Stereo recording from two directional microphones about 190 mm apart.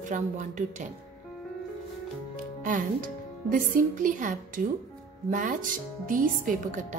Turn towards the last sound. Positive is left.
turn(degrees=-45)  # may be behind; listen again after turning